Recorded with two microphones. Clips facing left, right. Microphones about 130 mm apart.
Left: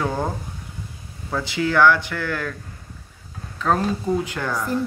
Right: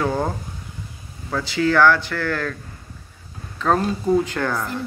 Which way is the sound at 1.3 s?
20° left (ahead or behind).